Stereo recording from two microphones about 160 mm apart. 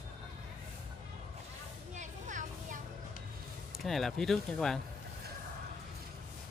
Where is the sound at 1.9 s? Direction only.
50° right (ahead or behind).